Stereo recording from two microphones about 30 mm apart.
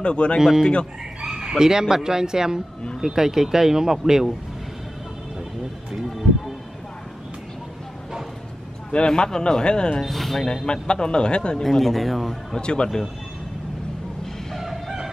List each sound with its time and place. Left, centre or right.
0.0 s speech: left
1.2 s chicken: right
1.6 s speech: centre
8.9 s speech: left
10.0 s speech: centre
10.5 s speech: left
11.6 s speech: centre
12.5 s speech: left